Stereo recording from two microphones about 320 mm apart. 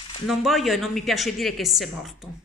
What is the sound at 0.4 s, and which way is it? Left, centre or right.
Speech, centre.